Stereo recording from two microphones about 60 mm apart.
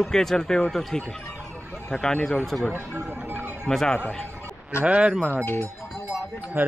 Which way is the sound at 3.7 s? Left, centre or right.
Centre.